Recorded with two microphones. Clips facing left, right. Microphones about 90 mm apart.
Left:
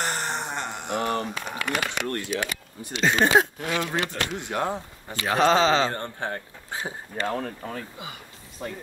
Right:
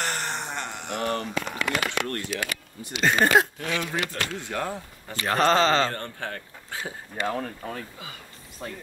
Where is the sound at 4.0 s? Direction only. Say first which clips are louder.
Left 1 dB; 20° left (ahead or behind).